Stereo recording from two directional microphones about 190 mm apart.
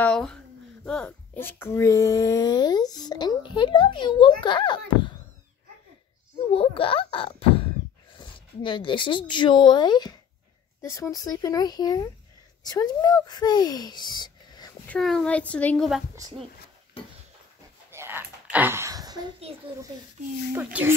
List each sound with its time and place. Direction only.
0.0 s speech: 5° left (ahead or behind); by 5.1 s 25° left (ahead or behind)
6.5 s speech: 30° left (ahead or behind)
14.9 s speech: centre (ahead or behind)
17.9 s a sound: 10° right (ahead or behind)
19.5 s a child's voice: 30° right (ahead or behind)
20.5 s speech: 10° right (ahead or behind)